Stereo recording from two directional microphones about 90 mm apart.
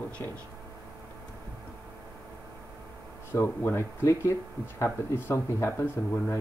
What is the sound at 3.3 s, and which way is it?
Speech, 25° left (ahead or behind).